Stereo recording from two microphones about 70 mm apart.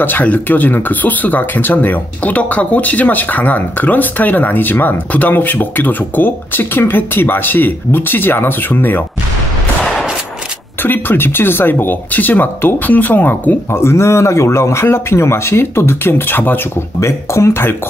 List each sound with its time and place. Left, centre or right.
0.0 s speech: left
10.8 s speech: left
13.7 s speech: left
17.0 s speech: left